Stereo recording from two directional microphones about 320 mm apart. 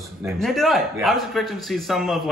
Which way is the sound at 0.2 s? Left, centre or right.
Centre.